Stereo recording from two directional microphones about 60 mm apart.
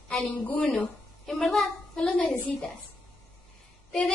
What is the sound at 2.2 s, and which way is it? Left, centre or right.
Speech, left.